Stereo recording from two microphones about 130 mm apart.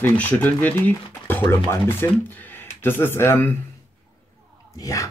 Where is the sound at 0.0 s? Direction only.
10° left (ahead or behind).